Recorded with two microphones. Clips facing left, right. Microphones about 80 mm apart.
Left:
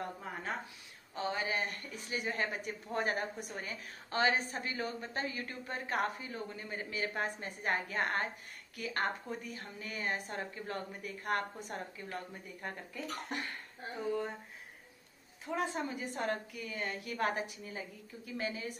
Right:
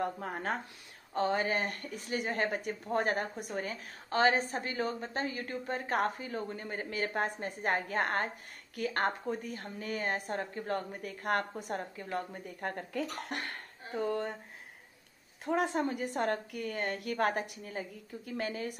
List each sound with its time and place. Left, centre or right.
0.0 s a woman's voice: right
15.4 s a woman's voice: right